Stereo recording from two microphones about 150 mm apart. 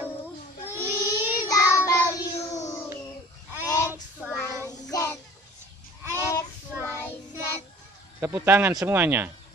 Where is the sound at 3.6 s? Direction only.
25° left (ahead or behind).